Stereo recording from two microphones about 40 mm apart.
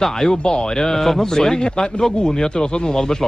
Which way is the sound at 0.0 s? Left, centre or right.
Centre.